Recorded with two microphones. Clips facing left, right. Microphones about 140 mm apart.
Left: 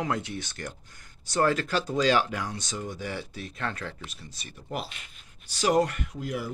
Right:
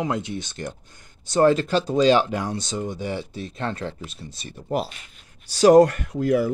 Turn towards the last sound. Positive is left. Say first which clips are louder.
# right 12 dB
turn(degrees=-60)  # may be behind; listen again after turning